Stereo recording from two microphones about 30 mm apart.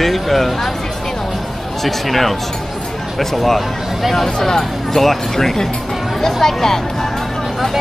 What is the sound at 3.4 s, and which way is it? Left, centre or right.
Speech, centre.